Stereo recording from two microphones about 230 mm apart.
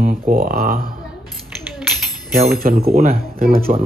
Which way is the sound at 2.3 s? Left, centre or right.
Right.